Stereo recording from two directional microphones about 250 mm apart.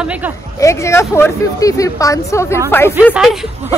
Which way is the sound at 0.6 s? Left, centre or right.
Centre.